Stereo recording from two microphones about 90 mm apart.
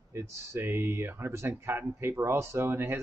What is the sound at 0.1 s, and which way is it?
Speech, 30° right (ahead or behind).